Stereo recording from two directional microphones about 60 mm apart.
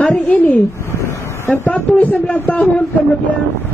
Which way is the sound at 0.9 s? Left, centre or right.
Left.